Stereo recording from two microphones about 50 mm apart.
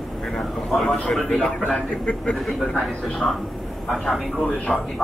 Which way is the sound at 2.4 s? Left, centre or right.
Centre.